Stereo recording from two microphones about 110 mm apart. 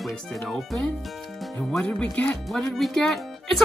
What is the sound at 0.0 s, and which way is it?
Speech, centre (ahead or behind).